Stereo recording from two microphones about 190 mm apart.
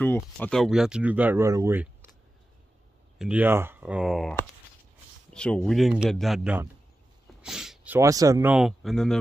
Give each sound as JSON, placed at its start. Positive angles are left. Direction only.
{"t": 0.0, "sound": "speech", "side_deg": 10}
{"t": 3.2, "sound": "speech", "side_deg": -5}